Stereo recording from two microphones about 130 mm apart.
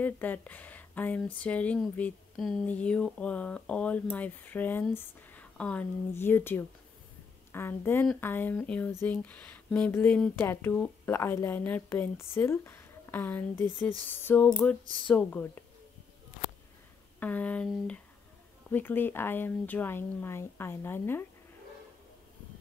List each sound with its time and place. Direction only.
0.0 s speech: 10° left (ahead or behind)
17.2 s speech: 10° left (ahead or behind)